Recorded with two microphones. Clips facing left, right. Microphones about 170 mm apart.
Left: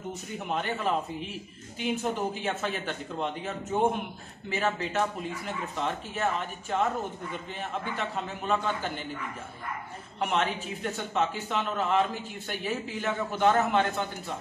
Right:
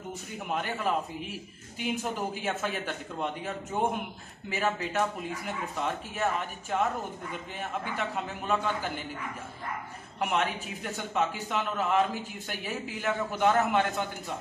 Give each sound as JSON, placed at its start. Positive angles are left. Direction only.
{"t": 0.5, "sound": "speech", "side_deg": -5}
{"t": 8.0, "sound": "speech", "side_deg": -10}
{"t": 10.2, "sound": "speech", "side_deg": -5}